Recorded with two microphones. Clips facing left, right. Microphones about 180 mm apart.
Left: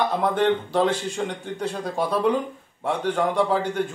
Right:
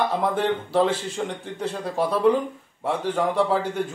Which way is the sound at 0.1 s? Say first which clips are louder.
Left 2 dB; 5° right (ahead or behind).